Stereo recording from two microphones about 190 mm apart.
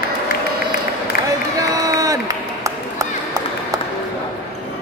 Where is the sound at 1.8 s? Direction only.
20° right (ahead or behind).